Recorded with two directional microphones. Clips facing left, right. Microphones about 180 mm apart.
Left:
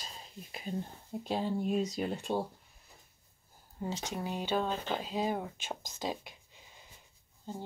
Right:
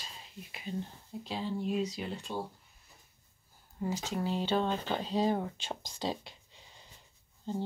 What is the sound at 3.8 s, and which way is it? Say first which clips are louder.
Speech: right 3 dB; 20° left (ahead or behind).